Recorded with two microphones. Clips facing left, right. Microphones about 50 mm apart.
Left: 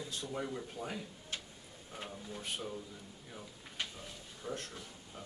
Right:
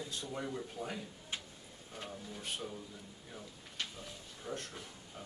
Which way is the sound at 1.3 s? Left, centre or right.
Centre.